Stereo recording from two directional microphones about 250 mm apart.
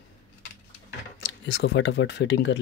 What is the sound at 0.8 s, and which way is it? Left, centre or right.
Speech, left.